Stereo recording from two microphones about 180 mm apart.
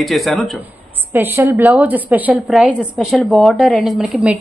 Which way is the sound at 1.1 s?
10° right (ahead or behind).